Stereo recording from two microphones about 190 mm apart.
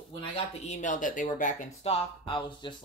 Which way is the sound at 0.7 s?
40° left (ahead or behind).